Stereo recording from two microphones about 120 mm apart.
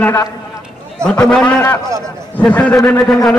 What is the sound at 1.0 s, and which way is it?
A man's voice, 5° left (ahead or behind).